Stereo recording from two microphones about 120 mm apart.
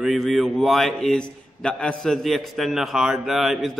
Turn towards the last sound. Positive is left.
turn(degrees=0)  # may be behind; listen again after turning